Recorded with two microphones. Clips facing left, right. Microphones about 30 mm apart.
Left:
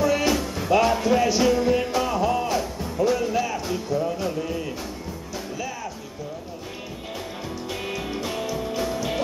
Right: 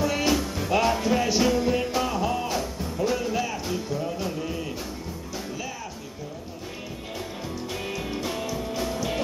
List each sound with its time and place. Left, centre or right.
0.0 s music: centre
7.7 s music: centre